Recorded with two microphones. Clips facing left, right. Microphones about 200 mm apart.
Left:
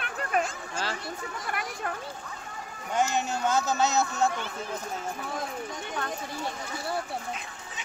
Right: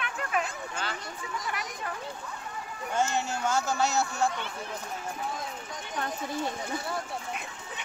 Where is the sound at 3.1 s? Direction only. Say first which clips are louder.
Left 2 dB; 20° left (ahead or behind).